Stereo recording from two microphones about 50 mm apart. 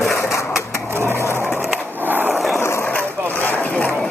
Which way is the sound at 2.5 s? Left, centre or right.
Left.